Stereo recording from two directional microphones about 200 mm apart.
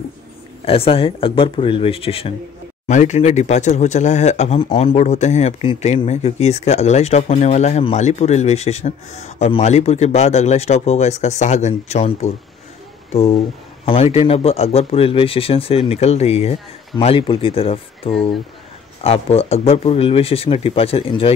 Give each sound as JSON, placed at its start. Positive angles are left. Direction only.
{"t": 0.7, "sound": "speech", "side_deg": 30}